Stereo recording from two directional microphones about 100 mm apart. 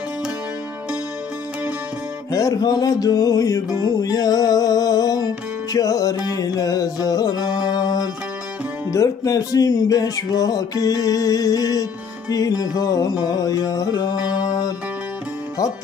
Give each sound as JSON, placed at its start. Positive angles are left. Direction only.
{"t": 2.3, "sound": "music", "side_deg": 35}